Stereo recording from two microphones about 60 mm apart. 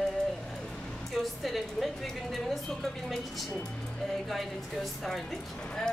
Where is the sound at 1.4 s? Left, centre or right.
Centre.